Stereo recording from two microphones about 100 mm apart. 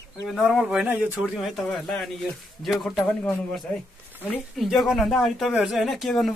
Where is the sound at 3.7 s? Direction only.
15° left (ahead or behind).